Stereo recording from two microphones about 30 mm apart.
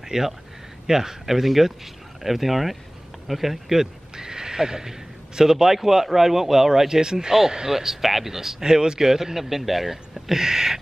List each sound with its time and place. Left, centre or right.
0.1 s speech: centre
7.7 s speech: centre